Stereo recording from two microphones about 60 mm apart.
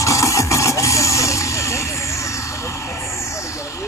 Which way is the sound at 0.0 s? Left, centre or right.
Left.